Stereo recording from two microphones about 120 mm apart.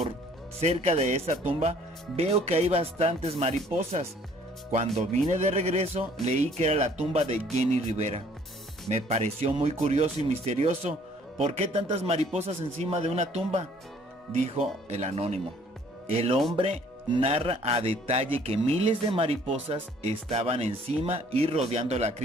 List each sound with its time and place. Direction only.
0.6 s speech: 65° right (ahead or behind)
4.9 s speech: 75° right (ahead or behind)
14.5 s speech: 65° right (ahead or behind); by 19.5 s 50° right (ahead or behind)
19.5 s speech: 60° right (ahead or behind)